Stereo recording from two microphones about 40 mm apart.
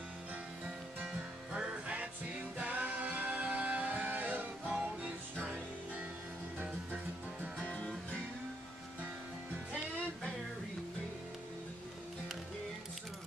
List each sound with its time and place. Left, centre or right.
1.7 s music: right
7.6 s music: left